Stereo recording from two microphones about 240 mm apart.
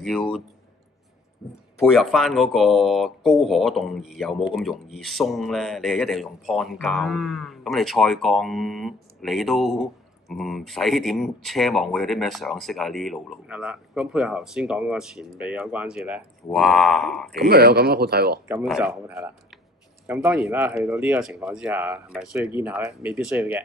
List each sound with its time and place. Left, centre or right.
0.0 s speech: centre
1.4 s speech: centre
17.4 s speech: right
18.5 s speech: centre